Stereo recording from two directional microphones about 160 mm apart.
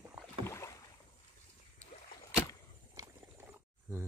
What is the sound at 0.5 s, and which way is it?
Rowboat, 20° left (ahead or behind).